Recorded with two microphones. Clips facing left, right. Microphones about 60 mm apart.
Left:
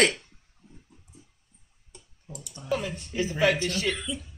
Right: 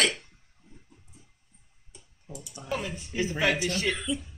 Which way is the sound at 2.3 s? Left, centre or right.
Left.